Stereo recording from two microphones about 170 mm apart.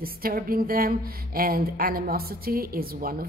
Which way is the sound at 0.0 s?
60° right (ahead or behind).